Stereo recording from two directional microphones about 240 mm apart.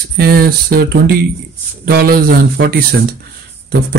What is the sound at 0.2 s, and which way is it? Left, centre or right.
Speech, right.